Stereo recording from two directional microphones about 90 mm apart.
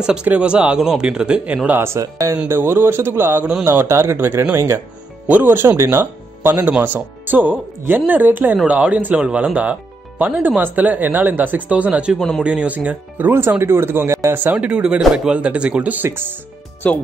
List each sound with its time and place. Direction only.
0.0 s speech: 10° right (ahead or behind)
1.8 s speech: 30° right (ahead or behind); by 12.2 s 10° right (ahead or behind)
12.2 s speech: centre (ahead or behind)
12.4 s speech: 15° right (ahead or behind); by 14.4 s 30° right (ahead or behind)
14.4 s speech: 15° right (ahead or behind)
16.8 s speech: 15° left (ahead or behind)